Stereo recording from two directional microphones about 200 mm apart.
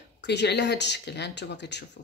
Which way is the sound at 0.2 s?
60° left (ahead or behind).